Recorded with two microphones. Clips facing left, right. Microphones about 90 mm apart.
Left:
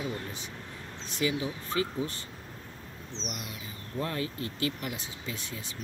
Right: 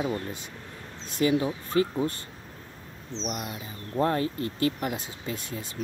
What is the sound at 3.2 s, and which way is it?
Speech, 40° right (ahead or behind).